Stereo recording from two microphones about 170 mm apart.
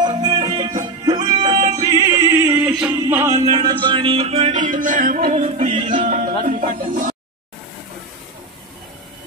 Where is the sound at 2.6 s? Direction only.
5° right (ahead or behind); by 6.1 s 40° right (ahead or behind).